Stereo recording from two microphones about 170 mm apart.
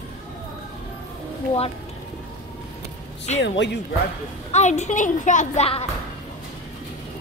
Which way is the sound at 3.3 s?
40° left (ahead or behind).